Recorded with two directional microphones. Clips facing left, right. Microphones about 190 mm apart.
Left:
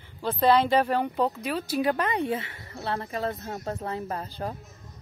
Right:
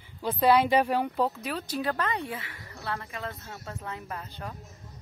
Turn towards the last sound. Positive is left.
turn(degrees=35)  # may be behind; listen again after turning